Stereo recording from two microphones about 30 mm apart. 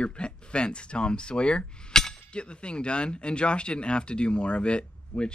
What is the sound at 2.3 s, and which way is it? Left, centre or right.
Speech, left.